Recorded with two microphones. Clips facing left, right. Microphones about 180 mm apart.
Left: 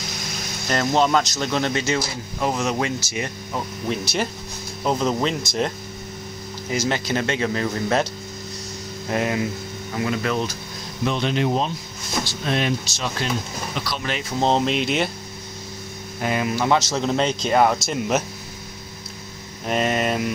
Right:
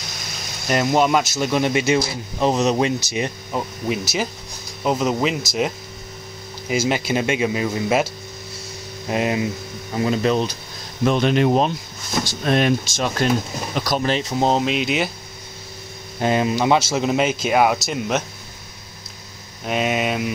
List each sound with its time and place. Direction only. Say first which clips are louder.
0.7 s speech: right 2 dB; 10° right (ahead or behind)
4.0 s speech: even; centre (ahead or behind)
6.7 s speech: right 3 dB; 10° right (ahead or behind)
9.1 s speech: right 2 dB; 20° right (ahead or behind)
11.1 s speech: right 5 dB; 55° right (ahead or behind)
14.4 s speech: left 1 dB; 5° right (ahead or behind)
16.2 s speech: right 4 dB; 25° right (ahead or behind); by 18.2 s centre (ahead or behind)
19.6 s speech: even; 5° right (ahead or behind)